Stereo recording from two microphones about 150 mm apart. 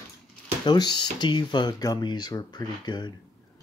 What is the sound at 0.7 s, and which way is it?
Speech, 30° left (ahead or behind).